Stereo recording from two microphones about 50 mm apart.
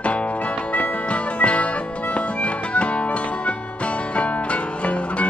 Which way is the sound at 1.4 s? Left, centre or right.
Left.